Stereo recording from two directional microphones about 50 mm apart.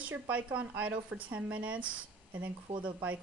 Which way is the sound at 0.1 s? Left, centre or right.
Right.